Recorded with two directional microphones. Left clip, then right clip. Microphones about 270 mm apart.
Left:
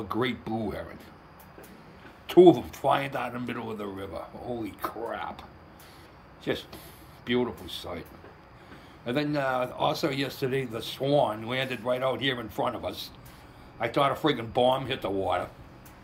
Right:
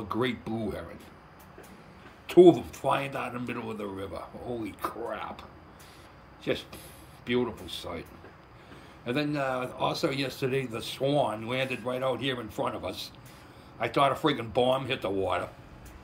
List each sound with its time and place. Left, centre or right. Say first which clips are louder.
0.1 s a man's voice: left 1 dB; centre
2.2 s a man's voice: left 1 dB; centre
9.0 s a man's voice: left 2 dB; centre